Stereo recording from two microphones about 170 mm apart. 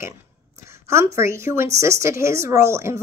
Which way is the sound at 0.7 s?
15° right (ahead or behind).